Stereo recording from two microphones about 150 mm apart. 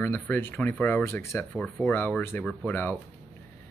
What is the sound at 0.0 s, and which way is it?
Speech, 15° left (ahead or behind).